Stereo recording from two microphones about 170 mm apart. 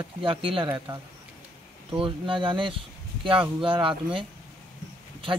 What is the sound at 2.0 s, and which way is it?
A man's voice, 30° right (ahead or behind).